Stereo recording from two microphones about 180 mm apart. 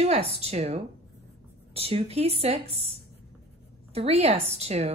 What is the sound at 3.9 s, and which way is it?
Speech, 35° right (ahead or behind).